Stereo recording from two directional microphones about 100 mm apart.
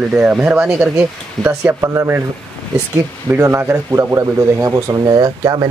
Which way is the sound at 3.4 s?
25° right (ahead or behind).